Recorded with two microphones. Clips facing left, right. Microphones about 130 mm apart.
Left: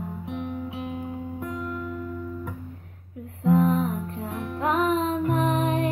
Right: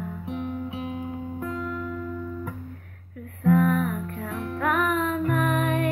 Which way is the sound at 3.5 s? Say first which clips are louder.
Even; 25° left (ahead or behind).